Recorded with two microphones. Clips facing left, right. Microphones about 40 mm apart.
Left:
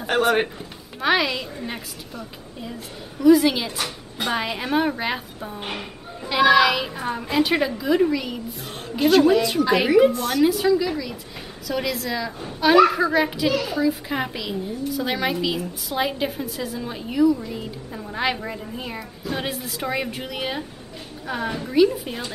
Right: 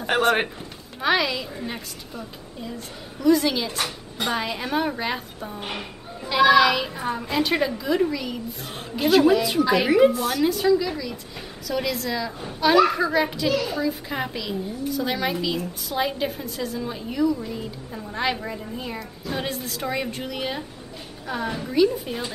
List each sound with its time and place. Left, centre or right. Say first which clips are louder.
0.0 s a woman's voice: left 1 dB; centre
3.2 s a woman's voice: left 4 dB; centre
3.7 s a woman's voice: right 1 dB; centre
4.3 s a woman's voice: left 2 dB; centre